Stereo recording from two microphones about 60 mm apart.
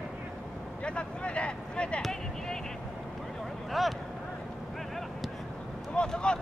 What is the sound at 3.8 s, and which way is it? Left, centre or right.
Vehicle, centre.